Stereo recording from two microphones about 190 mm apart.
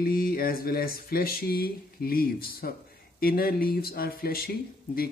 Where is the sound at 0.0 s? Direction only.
50° left (ahead or behind).